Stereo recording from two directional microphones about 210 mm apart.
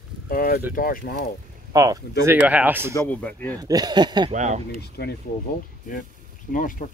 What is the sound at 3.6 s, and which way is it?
Speech, 20° right (ahead or behind).